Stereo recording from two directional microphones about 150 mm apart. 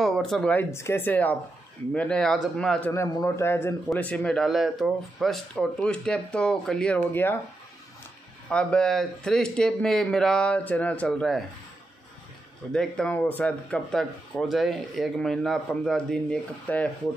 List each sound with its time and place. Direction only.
0.0 s speech: centre (ahead or behind)
2.9 s a man's voice: 20° left (ahead or behind)
8.5 s speech: 5° left (ahead or behind)
12.7 s speech: 5° left (ahead or behind)